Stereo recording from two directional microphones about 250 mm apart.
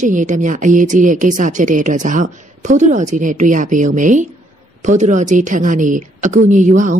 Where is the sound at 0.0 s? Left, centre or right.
Right.